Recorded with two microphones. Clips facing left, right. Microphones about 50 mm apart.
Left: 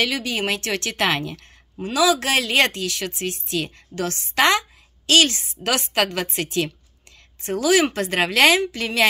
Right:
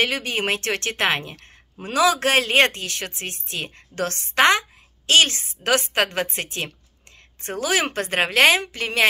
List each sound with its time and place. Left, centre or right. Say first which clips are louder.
0.0 s speech: even; right
2.0 s speech: right 1 dB; right
3.9 s a woman's voice: right 1 dB; right
4.4 s a woman's voice: right 1 dB; right